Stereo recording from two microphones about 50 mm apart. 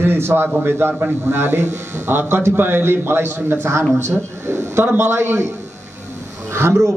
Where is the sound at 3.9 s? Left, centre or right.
Right.